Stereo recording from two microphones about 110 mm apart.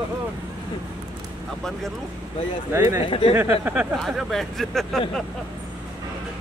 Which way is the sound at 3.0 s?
50° left (ahead or behind).